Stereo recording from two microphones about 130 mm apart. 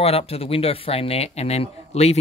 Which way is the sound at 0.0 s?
50° left (ahead or behind).